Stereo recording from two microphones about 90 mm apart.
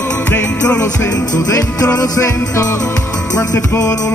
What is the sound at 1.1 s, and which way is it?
Music, 40° left (ahead or behind).